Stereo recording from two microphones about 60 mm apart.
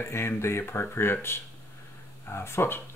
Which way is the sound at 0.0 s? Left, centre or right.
Left.